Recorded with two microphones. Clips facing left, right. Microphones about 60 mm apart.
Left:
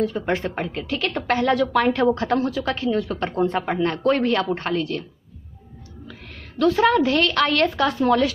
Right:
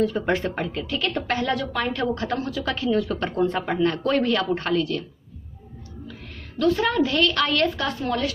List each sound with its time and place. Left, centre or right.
0.0 s speech: centre
0.8 s a woman's voice: left
2.6 s speech: left
6.8 s a woman's voice: left